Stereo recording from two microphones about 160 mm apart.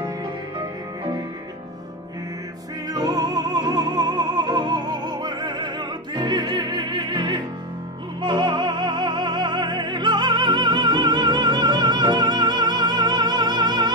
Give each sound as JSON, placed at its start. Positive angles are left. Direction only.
{"t": 2.9, "sound": "music", "side_deg": -25}